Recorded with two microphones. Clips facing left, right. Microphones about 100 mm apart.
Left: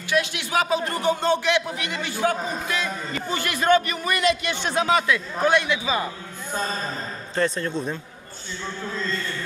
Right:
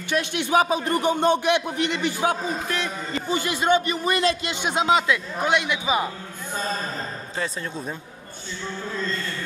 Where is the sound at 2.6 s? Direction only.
55° right (ahead or behind).